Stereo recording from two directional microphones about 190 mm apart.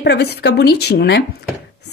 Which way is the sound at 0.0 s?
60° left (ahead or behind).